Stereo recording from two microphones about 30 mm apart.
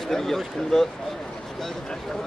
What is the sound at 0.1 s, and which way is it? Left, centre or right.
Speech, centre.